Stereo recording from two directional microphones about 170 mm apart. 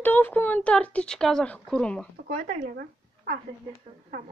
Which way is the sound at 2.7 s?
55° right (ahead or behind).